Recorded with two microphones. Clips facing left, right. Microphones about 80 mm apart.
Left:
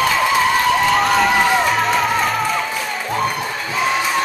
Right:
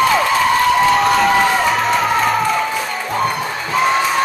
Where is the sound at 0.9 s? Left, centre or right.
Centre.